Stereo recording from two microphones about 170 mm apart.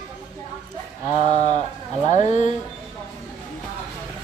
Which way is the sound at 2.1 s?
45° left (ahead or behind).